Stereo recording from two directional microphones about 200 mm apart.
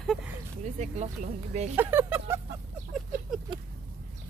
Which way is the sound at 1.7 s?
10° right (ahead or behind).